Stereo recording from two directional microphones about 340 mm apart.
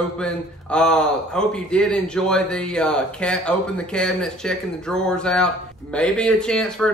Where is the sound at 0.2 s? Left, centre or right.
Centre.